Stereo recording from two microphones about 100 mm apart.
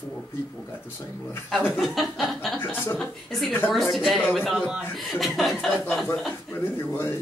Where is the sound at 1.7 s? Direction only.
Centre (ahead or behind).